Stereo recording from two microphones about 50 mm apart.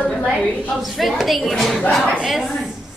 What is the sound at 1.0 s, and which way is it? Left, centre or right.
A woman's voice, centre.